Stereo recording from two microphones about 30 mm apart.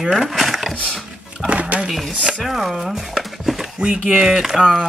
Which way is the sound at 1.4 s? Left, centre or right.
Right.